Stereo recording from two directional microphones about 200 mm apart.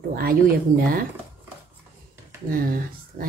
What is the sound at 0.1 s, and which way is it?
Speech, 50° right (ahead or behind).